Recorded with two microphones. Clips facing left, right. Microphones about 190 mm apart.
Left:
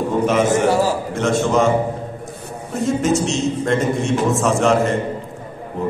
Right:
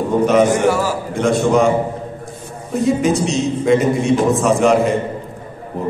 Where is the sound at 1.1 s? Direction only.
Centre (ahead or behind).